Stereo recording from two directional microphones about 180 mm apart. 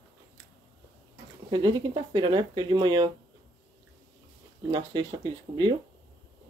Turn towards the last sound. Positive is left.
turn(degrees=-25)  # may be behind; listen again after turning